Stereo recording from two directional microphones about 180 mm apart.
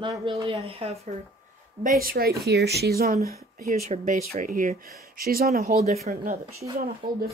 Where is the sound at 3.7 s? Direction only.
40° right (ahead or behind).